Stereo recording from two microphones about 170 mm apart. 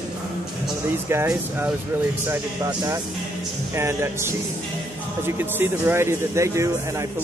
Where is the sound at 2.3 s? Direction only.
20° right (ahead or behind).